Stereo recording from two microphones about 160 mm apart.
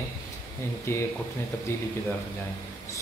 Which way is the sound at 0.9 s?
15° left (ahead or behind).